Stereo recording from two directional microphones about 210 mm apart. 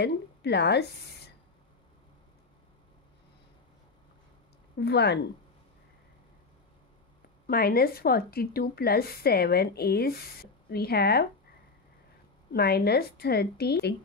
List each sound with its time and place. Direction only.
0.0 s a woman's voice: 50° left (ahead or behind)
4.7 s a woman's voice: 50° left (ahead or behind)
7.4 s a woman's voice: 45° left (ahead or behind)
12.5 s a woman's voice: 50° left (ahead or behind)